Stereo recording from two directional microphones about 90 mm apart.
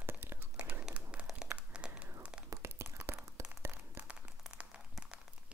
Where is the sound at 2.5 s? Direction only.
30° right (ahead or behind).